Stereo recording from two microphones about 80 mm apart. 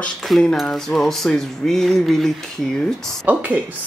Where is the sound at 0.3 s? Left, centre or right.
Centre.